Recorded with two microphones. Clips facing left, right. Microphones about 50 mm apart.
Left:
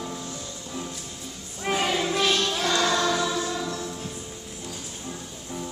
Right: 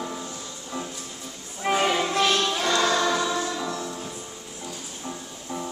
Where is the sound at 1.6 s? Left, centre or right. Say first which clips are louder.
Right 3 dB; centre.